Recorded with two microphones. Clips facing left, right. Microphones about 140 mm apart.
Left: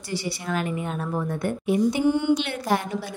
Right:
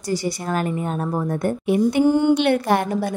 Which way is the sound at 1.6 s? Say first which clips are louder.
Right 4 dB; 60° right (ahead or behind).